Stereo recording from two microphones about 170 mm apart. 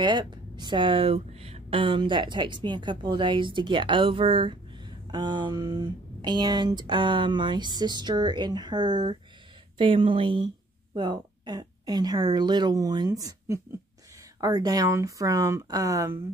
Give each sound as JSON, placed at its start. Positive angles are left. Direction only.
{"t": 0.0, "sound": "speech", "side_deg": -25}